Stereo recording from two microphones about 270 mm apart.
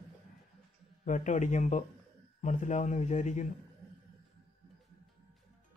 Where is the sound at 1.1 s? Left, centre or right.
Left.